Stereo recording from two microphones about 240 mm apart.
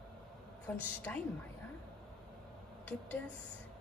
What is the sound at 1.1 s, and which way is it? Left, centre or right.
Speech, centre.